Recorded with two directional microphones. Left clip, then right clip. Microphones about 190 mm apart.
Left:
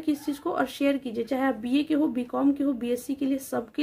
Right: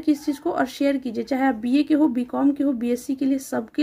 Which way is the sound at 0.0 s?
20° right (ahead or behind).